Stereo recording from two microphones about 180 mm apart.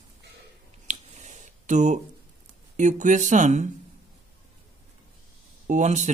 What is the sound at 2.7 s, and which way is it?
Speech, 45° right (ahead or behind).